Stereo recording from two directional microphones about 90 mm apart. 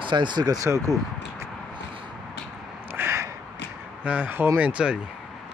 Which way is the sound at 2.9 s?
30° right (ahead or behind).